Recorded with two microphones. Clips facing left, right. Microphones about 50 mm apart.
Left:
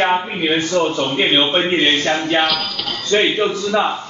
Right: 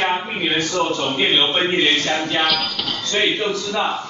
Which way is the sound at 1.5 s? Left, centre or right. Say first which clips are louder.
Left 2 dB; left.